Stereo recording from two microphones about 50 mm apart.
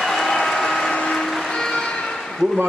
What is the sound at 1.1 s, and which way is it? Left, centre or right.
Music, centre.